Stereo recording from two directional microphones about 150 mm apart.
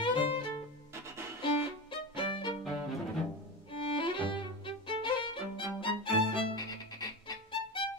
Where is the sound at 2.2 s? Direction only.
30° left (ahead or behind).